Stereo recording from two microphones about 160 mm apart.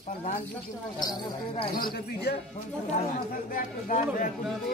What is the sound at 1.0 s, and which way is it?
Speech, 25° left (ahead or behind).